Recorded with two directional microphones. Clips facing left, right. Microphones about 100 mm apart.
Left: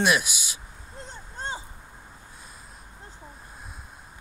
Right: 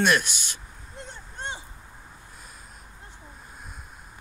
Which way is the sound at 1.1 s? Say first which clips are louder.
Left 2 dB; 35° left (ahead or behind).